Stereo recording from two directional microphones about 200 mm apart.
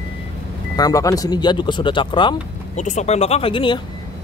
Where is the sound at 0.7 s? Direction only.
20° left (ahead or behind).